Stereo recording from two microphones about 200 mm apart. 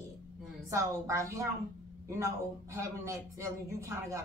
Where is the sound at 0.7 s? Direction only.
15° right (ahead or behind).